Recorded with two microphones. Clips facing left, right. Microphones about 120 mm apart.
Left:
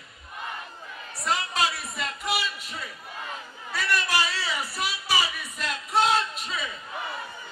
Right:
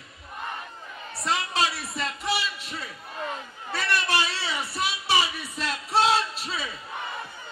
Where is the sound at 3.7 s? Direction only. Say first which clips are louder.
Right 1 dB; 25° right (ahead or behind).